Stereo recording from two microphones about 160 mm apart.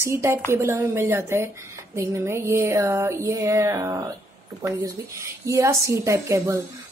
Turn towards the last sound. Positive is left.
turn(degrees=-20)  # may be behind; listen again after turning